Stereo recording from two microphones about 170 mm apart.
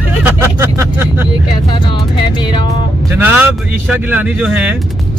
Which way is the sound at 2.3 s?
25° left (ahead or behind).